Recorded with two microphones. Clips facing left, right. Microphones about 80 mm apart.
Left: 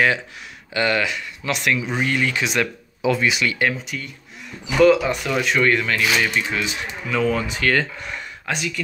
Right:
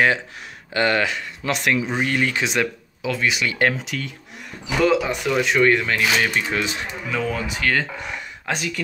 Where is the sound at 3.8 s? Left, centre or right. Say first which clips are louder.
Right 2 dB; right.